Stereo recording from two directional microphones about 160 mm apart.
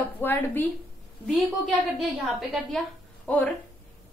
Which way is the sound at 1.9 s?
Centre (ahead or behind).